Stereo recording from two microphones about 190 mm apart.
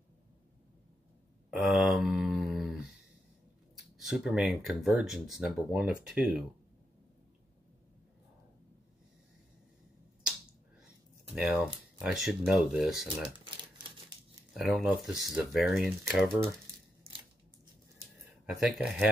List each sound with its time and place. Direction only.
1.5 s a sound: centre (ahead or behind)
3.7 s speech: centre (ahead or behind)
11.3 s speech: 5° right (ahead or behind)
13.4 s typewriter: 25° right (ahead or behind)
14.5 s speech: centre (ahead or behind)
18.4 s a sound: centre (ahead or behind)
18.8 s speech: 5° right (ahead or behind)